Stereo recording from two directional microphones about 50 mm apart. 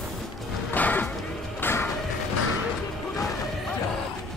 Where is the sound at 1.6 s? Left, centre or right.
Left.